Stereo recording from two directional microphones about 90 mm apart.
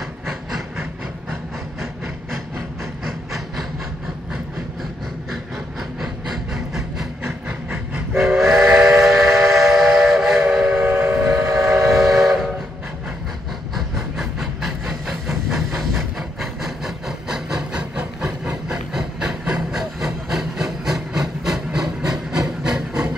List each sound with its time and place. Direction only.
0.3 s train: centre (ahead or behind)
3.1 s a sound: centre (ahead or behind)
5.9 s train: 5° right (ahead or behind)
8.2 s train: 5° right (ahead or behind)
10.8 s train: 15° right (ahead or behind); by 12.4 s centre (ahead or behind)
13.7 s hiss: 5° right (ahead or behind)